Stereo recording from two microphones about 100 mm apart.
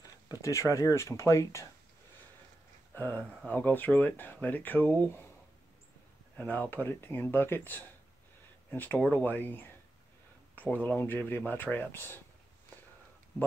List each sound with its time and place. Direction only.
0.3 s speech: 30° left (ahead or behind)
2.9 s speech: 20° left (ahead or behind)
6.3 s speech: 15° left (ahead or behind)